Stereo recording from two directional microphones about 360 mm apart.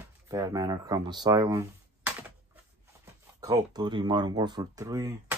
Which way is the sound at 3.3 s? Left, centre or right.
Centre.